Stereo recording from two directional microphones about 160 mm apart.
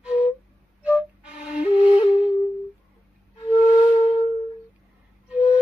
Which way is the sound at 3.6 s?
40° left (ahead or behind).